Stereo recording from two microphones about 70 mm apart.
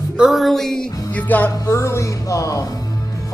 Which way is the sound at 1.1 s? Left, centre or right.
Left.